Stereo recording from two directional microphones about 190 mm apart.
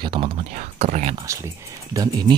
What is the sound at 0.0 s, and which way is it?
Speech, 25° right (ahead or behind).